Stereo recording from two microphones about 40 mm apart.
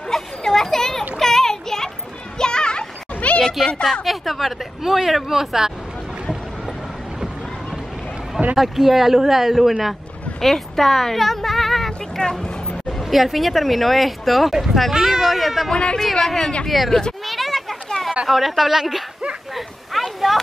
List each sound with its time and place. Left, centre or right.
0.1 s a sound: centre; by 3.4 s left
4.0 s speech: centre
8.5 s speech: centre
10.4 s speech: centre
12.2 s speech: centre
12.9 s speech: centre
14.5 s speech: centre
15.7 s speech: centre
16.6 s speech: centre
17.2 s a sound: centre
18.2 s speech: centre
19.5 s a sound: centre